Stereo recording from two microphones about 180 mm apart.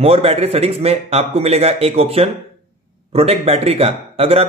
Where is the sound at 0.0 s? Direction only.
35° right (ahead or behind).